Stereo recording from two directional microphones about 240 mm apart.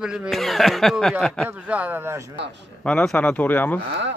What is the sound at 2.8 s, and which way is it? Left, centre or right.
Speech, centre.